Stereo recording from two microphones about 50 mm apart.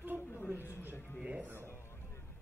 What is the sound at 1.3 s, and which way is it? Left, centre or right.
Speech, right.